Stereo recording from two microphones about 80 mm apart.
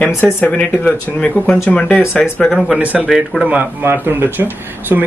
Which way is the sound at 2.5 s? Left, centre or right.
Centre.